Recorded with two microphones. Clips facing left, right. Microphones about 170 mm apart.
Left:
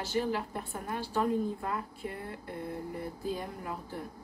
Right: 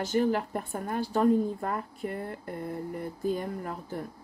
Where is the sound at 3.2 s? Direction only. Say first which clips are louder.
Right 9 dB; 50° right (ahead or behind).